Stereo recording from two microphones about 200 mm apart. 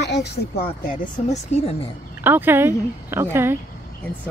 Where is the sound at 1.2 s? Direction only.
30° left (ahead or behind).